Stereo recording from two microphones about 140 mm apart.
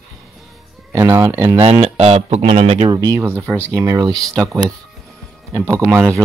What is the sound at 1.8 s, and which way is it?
Speech, 45° right (ahead or behind).